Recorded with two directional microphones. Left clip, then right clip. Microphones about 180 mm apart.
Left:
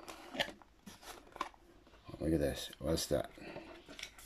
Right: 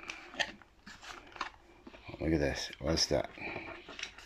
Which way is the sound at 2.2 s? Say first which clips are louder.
Right 3 dB; 20° left (ahead or behind).